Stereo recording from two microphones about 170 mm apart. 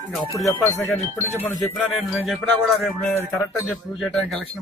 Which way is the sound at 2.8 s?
10° left (ahead or behind).